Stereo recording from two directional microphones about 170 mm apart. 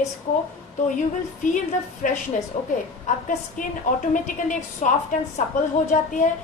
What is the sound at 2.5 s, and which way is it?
A woman's voice, 45° left (ahead or behind).